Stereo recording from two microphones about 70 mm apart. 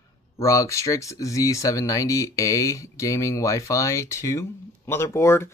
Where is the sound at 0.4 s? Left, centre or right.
Left.